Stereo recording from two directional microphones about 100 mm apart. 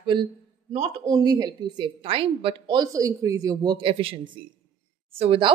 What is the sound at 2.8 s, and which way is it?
A man's voice, 35° right (ahead or behind).